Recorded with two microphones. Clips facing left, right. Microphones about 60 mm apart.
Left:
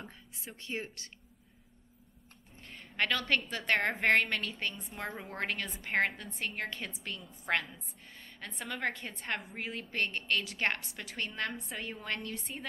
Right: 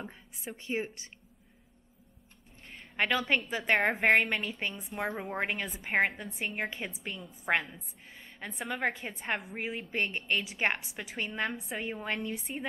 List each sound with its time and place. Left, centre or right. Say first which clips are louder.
0.0 s a sound: right 4 dB; right
0.6 s speech: right 5 dB; right
2.6 s a woman's voice: right 2 dB; centre